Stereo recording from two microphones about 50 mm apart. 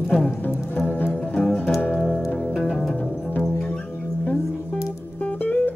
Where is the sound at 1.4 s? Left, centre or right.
Centre.